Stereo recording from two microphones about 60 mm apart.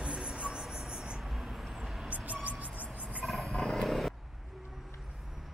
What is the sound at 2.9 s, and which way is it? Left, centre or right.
Wild animals, right.